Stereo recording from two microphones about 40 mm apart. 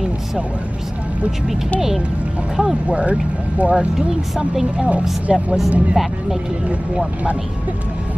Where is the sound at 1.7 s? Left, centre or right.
Centre.